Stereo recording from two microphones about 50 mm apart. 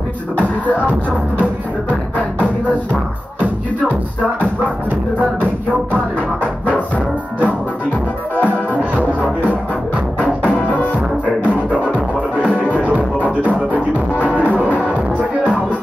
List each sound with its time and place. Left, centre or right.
6.4 s music: left
11.4 s music: right